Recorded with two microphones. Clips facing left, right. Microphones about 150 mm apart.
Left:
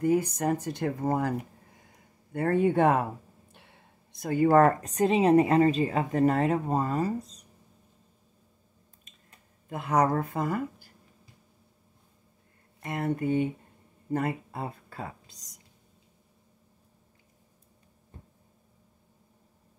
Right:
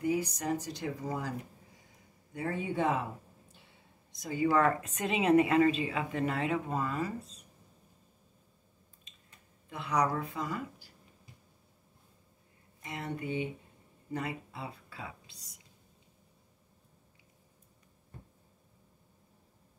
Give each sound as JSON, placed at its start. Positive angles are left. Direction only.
{"t": 0.0, "sound": "speech", "side_deg": 50}
{"t": 9.7, "sound": "speech", "side_deg": 50}
{"t": 12.8, "sound": "speech", "side_deg": 50}